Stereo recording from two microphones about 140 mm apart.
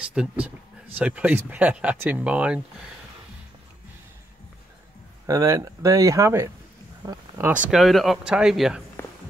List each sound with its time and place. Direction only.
0.0 s speech: 5° right (ahead or behind)
5.2 s speech: 20° right (ahead or behind); by 8.8 s 5° right (ahead or behind)